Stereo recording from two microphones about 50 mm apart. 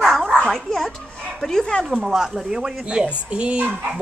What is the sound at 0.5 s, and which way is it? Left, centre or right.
Speech, centre.